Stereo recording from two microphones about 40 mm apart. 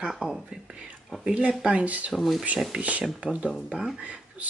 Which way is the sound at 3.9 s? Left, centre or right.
Right.